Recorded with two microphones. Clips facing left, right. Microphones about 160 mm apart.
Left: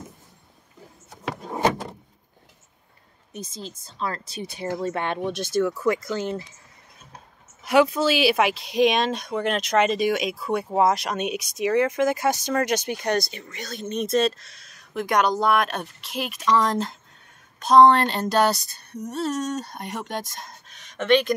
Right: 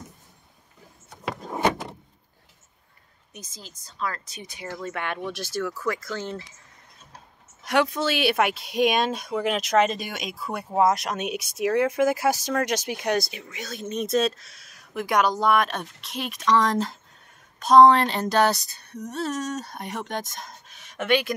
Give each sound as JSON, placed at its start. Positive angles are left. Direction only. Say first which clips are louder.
{"t": 3.3, "sound": "speech", "louder": "left 9 dB", "side_deg": 30}
{"t": 7.6, "sound": "speech", "louder": "left 4 dB", "side_deg": 5}